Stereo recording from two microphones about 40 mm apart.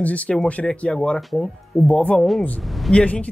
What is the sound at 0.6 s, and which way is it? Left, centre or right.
Speech, centre.